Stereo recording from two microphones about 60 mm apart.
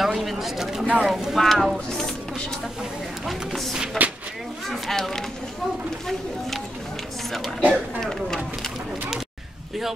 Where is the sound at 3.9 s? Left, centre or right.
Right.